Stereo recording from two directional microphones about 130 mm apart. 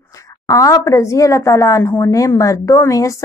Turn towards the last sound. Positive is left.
turn(degrees=25)  # may be behind; listen again after turning